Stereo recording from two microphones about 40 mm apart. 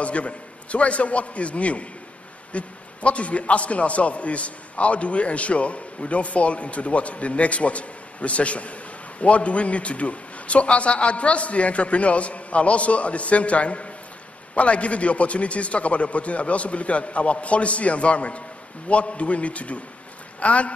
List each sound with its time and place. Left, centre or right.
0.0 s a man's voice: left